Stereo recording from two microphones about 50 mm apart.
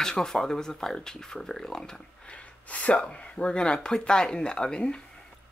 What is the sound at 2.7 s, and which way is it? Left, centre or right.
Speech, left.